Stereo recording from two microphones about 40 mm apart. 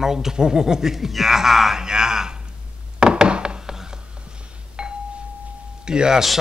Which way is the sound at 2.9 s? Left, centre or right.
Right.